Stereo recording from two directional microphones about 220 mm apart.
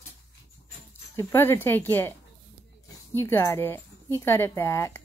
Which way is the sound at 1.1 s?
10° left (ahead or behind).